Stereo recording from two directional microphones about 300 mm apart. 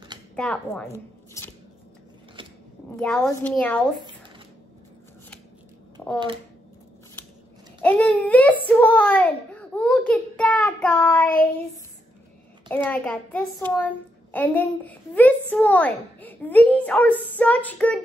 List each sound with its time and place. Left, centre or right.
0.4 s speech: centre
2.4 s a sound: centre
3.0 s a child's voice: centre
6.1 s speech: centre
7.8 s a child's voice: centre